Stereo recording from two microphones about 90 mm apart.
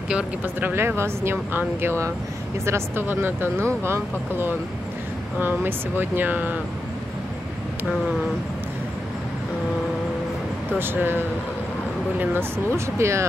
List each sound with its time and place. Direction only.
0.1 s speech: 20° right (ahead or behind)
10.8 s speech: 25° right (ahead or behind)